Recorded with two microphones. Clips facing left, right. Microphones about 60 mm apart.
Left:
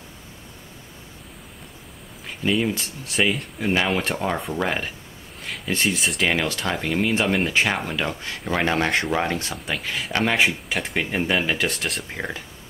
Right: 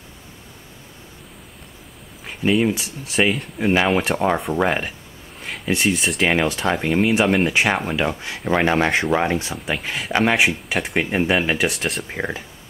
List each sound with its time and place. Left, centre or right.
2.2 s speech: centre
3.5 s speech: centre
5.4 s speech: centre
6.2 s speech: centre